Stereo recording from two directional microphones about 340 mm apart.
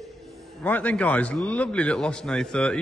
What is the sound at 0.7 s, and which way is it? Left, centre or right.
A man's voice, centre.